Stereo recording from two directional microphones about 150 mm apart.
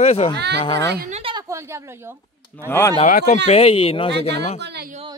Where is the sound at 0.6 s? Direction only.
30° left (ahead or behind).